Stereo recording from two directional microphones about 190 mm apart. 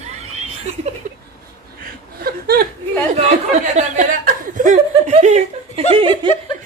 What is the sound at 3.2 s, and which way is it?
Speech, 35° right (ahead or behind).